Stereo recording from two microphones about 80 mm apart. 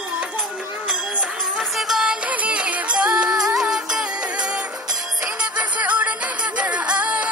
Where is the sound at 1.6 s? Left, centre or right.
Centre.